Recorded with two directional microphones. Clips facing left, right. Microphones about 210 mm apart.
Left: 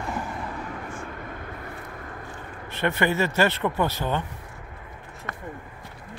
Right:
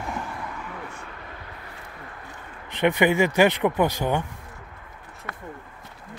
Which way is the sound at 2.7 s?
15° right (ahead or behind).